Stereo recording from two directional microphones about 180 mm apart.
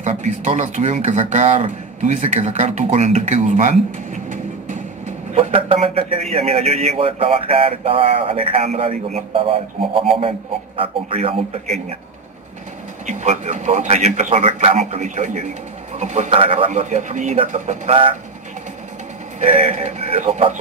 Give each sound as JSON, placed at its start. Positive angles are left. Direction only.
{"t": 0.0, "sound": "speech", "side_deg": -45}
{"t": 5.3, "sound": "speech", "side_deg": -30}
{"t": 13.0, "sound": "speech", "side_deg": -40}
{"t": 19.4, "sound": "speech", "side_deg": -40}